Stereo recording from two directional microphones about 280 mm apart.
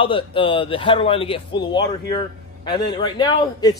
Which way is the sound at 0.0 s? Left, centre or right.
Centre.